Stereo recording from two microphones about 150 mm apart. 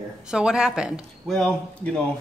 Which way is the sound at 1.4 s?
5° left (ahead or behind).